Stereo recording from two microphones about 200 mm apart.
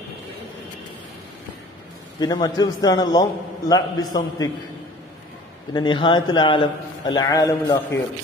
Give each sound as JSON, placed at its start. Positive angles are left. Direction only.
{"t": 2.1, "sound": "a man's voice", "side_deg": 20}
{"t": 5.7, "sound": "a man's voice", "side_deg": 20}